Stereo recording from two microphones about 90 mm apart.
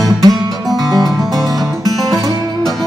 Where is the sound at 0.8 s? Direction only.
45° right (ahead or behind).